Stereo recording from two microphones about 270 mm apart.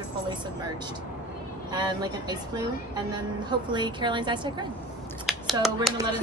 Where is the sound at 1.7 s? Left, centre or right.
Centre.